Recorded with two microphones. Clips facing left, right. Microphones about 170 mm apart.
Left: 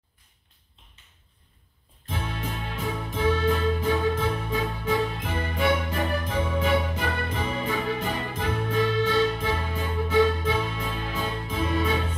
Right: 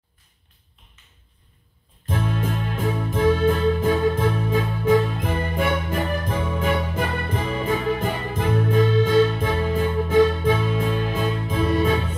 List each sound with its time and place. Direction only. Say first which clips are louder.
2.0 s music: right 7 dB; 50° right (ahead or behind)